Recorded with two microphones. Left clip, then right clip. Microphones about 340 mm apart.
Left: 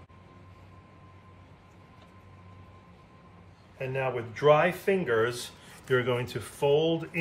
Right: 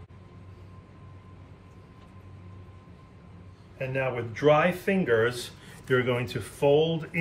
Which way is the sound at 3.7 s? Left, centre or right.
Centre.